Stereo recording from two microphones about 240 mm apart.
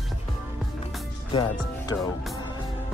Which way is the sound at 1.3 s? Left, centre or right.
Centre.